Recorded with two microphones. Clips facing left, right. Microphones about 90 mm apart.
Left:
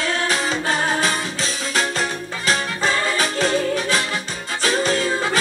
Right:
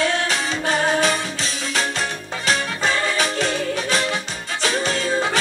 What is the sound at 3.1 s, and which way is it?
Music, 40° left (ahead or behind).